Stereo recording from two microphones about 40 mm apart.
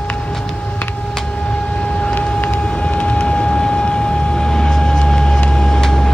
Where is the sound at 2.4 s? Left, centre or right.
Left.